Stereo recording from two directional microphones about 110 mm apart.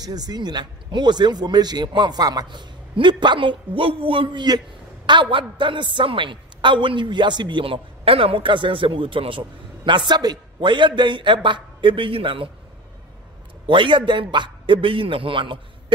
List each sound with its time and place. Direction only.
0.0 s speech: 35° right (ahead or behind); by 12.4 s 50° right (ahead or behind)
13.7 s speech: 45° right (ahead or behind)